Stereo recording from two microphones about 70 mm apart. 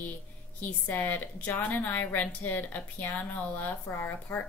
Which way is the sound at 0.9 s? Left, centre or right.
Left.